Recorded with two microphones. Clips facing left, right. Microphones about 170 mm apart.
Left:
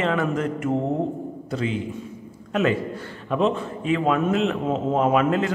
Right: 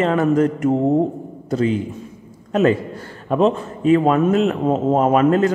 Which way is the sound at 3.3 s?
40° right (ahead or behind).